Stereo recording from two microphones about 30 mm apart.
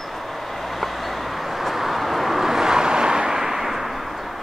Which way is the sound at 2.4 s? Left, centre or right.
Centre.